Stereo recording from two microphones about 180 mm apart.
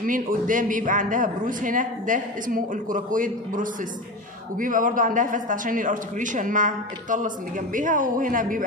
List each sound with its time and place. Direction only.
0.0 s a man's voice: 45° right (ahead or behind)